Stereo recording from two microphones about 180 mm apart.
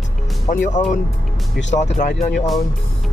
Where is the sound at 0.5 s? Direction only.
45° left (ahead or behind).